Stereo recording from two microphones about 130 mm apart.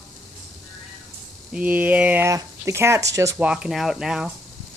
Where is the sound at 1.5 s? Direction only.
10° right (ahead or behind).